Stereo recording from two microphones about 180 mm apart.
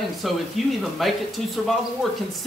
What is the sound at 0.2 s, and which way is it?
Speech, centre (ahead or behind).